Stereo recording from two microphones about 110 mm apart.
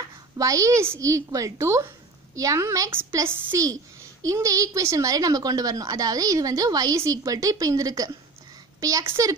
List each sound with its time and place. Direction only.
0.4 s a woman's voice: 30° right (ahead or behind)
2.9 s a woman's voice: 20° right (ahead or behind)